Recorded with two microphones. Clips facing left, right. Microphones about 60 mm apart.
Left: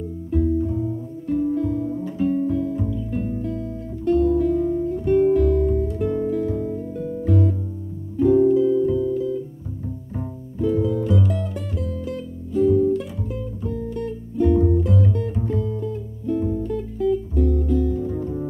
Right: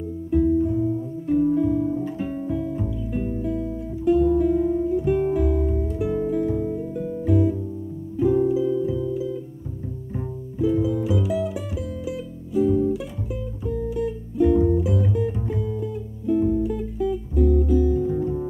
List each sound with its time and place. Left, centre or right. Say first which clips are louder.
0.3 s music: right 2 dB; centre
10.6 s music: left 1 dB; centre